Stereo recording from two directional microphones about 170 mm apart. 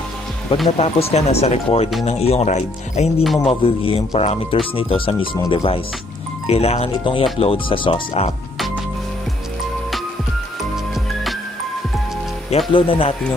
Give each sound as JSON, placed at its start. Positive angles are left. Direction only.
{"t": 0.7, "sound": "speech", "side_deg": 35}
{"t": 12.7, "sound": "speech", "side_deg": 30}